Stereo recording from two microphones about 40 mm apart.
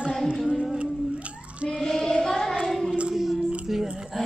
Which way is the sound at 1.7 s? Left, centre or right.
Centre.